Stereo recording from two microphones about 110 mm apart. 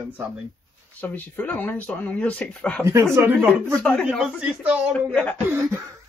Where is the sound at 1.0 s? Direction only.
15° left (ahead or behind).